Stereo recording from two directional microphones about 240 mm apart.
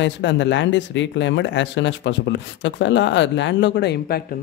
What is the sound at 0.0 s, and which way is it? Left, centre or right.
Speech, left.